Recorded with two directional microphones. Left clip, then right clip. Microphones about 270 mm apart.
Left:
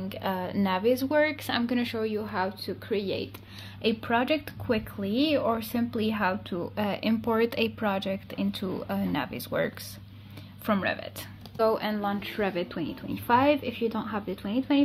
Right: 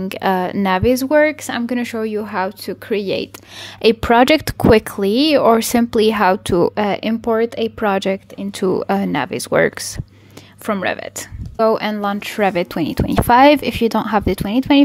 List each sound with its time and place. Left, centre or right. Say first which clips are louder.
0.1 s speech: right 14 dB; right